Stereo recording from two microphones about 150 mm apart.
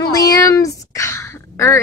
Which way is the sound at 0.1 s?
25° left (ahead or behind).